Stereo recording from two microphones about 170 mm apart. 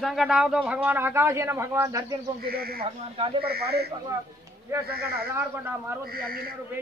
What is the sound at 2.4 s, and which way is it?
Speech, 65° right (ahead or behind).